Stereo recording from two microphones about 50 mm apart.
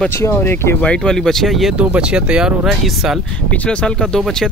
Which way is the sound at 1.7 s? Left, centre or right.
Right.